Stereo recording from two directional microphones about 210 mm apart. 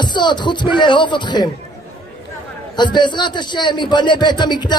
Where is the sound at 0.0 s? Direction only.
20° left (ahead or behind).